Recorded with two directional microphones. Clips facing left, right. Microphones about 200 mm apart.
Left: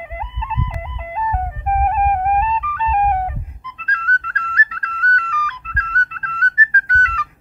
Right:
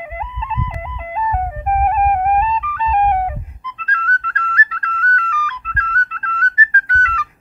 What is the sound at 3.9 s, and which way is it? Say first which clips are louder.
Whistle: right 1 dB; 35° left (ahead or behind).